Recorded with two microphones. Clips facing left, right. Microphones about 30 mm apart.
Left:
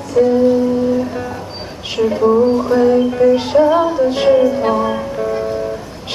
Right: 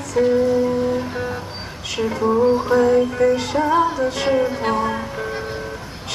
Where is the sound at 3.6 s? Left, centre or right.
Centre.